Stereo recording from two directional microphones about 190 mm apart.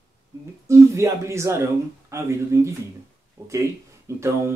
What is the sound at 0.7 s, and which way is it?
Speech, 15° right (ahead or behind).